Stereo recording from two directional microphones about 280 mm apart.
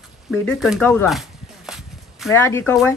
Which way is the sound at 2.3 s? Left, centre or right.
Centre.